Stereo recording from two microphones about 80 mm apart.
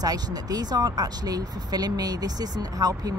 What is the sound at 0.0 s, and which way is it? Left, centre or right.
Speech, right.